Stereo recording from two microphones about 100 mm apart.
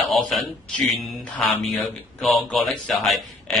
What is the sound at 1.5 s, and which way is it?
Speech, centre (ahead or behind).